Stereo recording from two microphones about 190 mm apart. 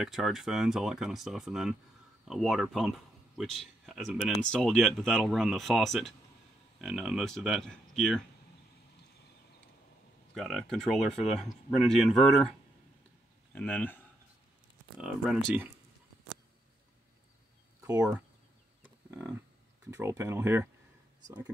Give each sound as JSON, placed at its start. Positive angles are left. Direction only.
{"t": 0.0, "sound": "speech", "side_deg": 0}
{"t": 10.3, "sound": "speech", "side_deg": 0}
{"t": 13.6, "sound": "speech", "side_deg": 10}
{"t": 15.0, "sound": "speech", "side_deg": -5}
{"t": 17.8, "sound": "speech", "side_deg": -15}
{"t": 19.0, "sound": "wild animals", "side_deg": -15}
{"t": 19.9, "sound": "speech", "side_deg": -15}